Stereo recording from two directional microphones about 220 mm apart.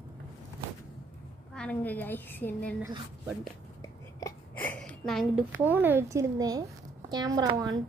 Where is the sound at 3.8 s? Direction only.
15° left (ahead or behind).